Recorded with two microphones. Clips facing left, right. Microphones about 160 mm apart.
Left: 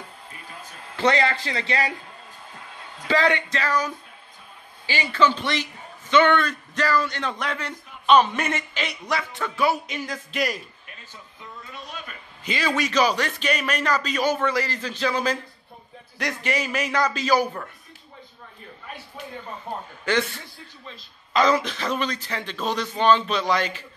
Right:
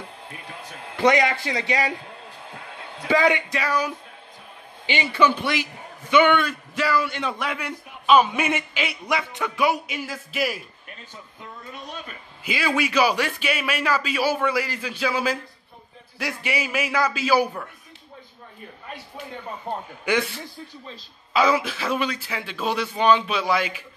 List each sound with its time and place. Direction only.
0.9 s a man's voice: 15° right (ahead or behind)
3.1 s a man's voice: 10° right (ahead or behind)
11.7 s a sound: 45° right (ahead or behind)
12.4 s a man's voice: 10° right (ahead or behind)
20.1 s a man's voice: 15° right (ahead or behind)
21.3 s a man's voice: 10° right (ahead or behind)